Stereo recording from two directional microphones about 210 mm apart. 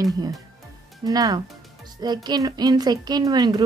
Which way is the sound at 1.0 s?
20° right (ahead or behind).